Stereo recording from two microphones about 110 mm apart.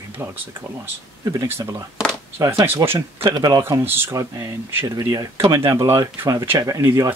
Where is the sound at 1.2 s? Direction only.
30° right (ahead or behind).